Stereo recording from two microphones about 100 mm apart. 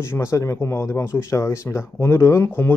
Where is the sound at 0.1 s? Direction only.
30° left (ahead or behind).